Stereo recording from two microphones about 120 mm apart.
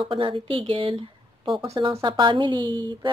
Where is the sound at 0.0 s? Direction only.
45° right (ahead or behind).